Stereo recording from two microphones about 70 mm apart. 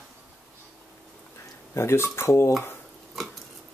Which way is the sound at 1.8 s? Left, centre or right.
Left.